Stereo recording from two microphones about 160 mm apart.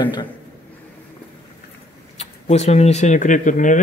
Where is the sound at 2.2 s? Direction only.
40° left (ahead or behind).